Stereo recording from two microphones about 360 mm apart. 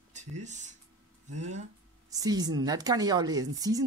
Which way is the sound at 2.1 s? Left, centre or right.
Centre.